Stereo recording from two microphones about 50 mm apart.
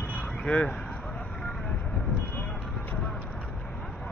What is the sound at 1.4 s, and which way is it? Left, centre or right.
Vehicle, centre.